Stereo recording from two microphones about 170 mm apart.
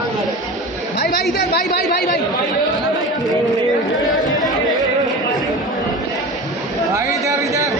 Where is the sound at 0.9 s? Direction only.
75° left (ahead or behind).